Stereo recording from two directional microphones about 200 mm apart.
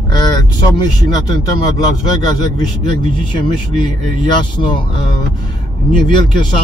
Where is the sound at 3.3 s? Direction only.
20° left (ahead or behind).